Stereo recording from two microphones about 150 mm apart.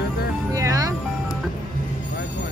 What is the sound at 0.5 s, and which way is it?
Music, 20° right (ahead or behind).